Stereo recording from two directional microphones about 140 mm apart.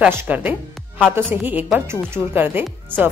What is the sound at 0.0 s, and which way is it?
A woman's voice, 15° right (ahead or behind).